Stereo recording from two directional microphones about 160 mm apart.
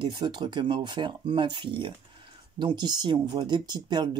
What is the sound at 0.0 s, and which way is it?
Speech, 30° right (ahead or behind).